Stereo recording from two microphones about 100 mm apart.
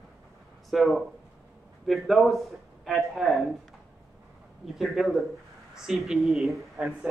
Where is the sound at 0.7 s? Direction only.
Centre (ahead or behind).